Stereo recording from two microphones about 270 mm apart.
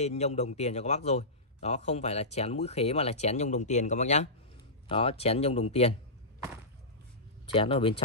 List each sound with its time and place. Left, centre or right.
0.0 s a man's voice: left
7.5 s a man's voice: centre